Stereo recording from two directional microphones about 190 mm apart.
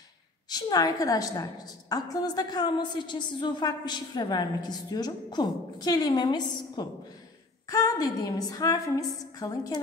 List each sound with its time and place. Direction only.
0.5 s a woman's voice: 20° left (ahead or behind)